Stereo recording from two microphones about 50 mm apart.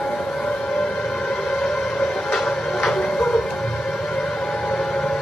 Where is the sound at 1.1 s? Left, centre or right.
Centre.